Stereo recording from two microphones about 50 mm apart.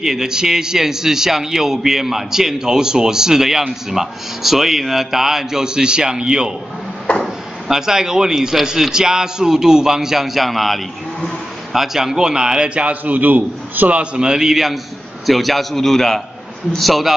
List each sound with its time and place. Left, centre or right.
0.0 s a man's voice: centre
7.1 s chop: left
7.6 s a man's voice: centre
11.7 s a man's voice: centre
13.0 s a man's voice: right
14.1 s a man's voice: centre